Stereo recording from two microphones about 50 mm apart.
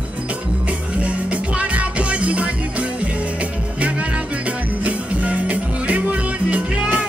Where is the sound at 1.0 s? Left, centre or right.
Right.